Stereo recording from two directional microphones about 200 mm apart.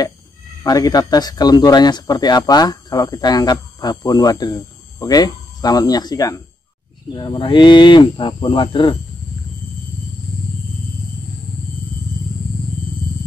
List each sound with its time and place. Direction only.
0.7 s speech: 20° left (ahead or behind)